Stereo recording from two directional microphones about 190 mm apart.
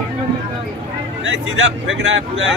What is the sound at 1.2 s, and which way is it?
Speech, 80° right.